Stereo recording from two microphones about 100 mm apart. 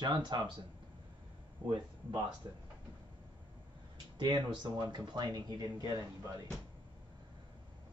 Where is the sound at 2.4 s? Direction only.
40° right (ahead or behind).